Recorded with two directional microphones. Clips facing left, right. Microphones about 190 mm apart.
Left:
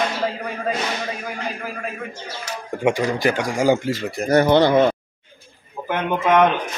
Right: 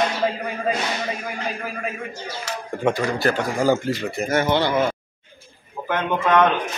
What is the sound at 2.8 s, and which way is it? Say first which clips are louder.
A man's voice: left 2 dB; 15° left (ahead or behind).